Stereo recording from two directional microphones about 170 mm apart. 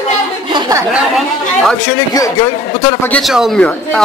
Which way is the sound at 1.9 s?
20° left (ahead or behind).